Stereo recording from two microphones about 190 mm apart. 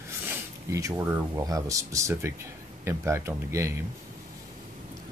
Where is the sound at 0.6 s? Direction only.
15° right (ahead or behind).